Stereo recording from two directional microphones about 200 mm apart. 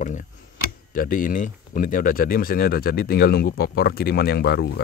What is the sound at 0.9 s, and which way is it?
Speech, 45° left (ahead or behind).